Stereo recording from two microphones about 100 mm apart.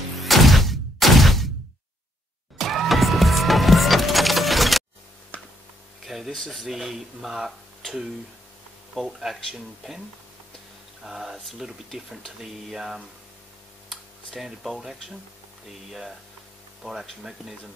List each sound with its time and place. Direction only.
0.2 s a sound: centre (ahead or behind)
2.5 s music: centre (ahead or behind)
5.3 s a sound: 15° left (ahead or behind)
6.0 s speech: centre (ahead or behind)
9.2 s speech: centre (ahead or behind)
11.1 s speech: 5° right (ahead or behind)